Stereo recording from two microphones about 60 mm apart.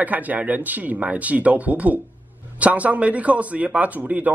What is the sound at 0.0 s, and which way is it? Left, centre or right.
A man's voice, right.